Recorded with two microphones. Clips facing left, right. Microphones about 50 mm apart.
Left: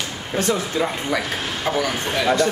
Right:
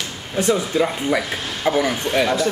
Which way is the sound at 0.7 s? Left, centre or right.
Centre.